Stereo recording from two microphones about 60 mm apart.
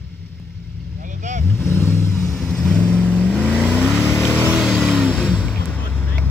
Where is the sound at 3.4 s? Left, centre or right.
Right.